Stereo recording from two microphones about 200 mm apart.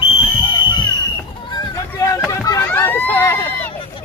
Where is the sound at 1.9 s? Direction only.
15° left (ahead or behind).